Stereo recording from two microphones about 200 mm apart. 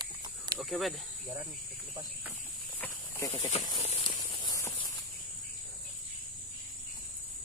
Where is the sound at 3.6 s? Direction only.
30° left (ahead or behind).